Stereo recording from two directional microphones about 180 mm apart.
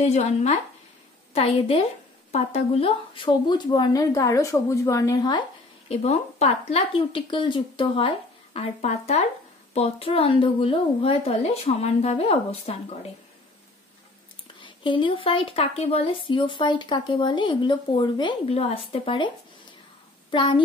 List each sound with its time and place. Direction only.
0.0 s a woman's voice: 40° left (ahead or behind); by 5.4 s 20° left (ahead or behind)
5.9 s a woman's voice: 35° left (ahead or behind)
14.6 s a child's voice: 30° left (ahead or behind)